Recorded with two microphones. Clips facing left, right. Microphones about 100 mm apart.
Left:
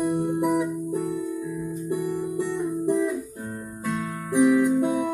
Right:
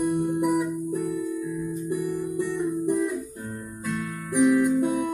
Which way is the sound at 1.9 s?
30° left (ahead or behind).